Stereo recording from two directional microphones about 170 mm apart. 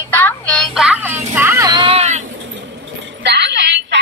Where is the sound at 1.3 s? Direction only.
15° right (ahead or behind); by 2.2 s 40° right (ahead or behind).